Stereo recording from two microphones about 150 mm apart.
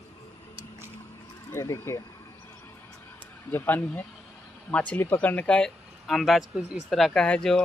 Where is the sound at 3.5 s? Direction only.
15° left (ahead or behind).